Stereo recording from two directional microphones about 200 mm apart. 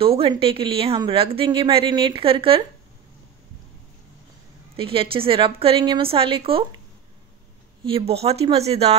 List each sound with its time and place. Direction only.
0.0 s a woman's voice: 30° right (ahead or behind)
4.7 s a woman's voice: 25° right (ahead or behind)
7.8 s speech: 30° right (ahead or behind)